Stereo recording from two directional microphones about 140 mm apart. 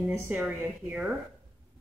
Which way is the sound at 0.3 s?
10° right (ahead or behind).